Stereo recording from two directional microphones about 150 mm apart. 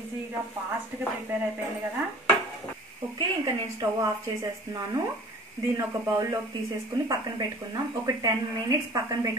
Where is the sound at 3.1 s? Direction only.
25° right (ahead or behind).